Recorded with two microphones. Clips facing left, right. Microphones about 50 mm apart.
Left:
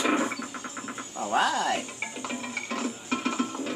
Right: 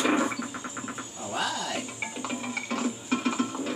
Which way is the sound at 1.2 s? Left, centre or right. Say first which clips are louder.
Left 7 dB; left.